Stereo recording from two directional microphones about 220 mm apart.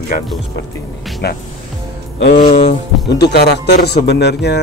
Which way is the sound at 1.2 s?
45° left (ahead or behind).